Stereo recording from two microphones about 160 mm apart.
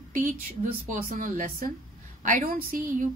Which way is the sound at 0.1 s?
60° right (ahead or behind).